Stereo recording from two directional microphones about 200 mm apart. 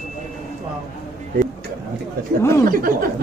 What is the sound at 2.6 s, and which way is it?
Speech, 45° right (ahead or behind).